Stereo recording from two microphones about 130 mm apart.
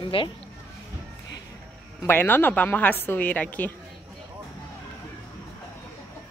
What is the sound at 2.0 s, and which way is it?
A woman's voice, 15° left (ahead or behind).